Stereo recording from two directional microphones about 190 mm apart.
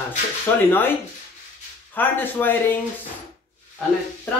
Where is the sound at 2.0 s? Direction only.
10° left (ahead or behind).